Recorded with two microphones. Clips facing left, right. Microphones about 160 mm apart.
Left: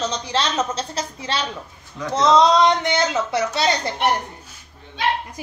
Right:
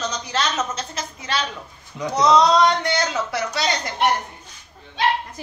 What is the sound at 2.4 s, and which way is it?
A woman's voice, 25° left (ahead or behind).